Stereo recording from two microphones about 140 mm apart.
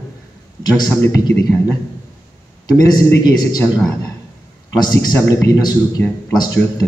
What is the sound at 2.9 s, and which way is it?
Speech, 30° left (ahead or behind).